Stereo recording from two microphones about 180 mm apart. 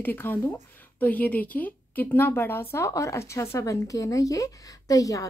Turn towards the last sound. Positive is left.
turn(degrees=20)  # may be behind; listen again after turning